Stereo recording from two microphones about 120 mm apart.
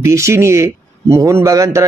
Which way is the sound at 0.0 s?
25° right (ahead or behind).